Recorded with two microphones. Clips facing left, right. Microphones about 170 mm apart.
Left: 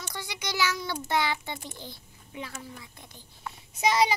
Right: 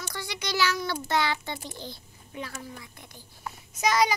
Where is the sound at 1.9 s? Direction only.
20° left (ahead or behind).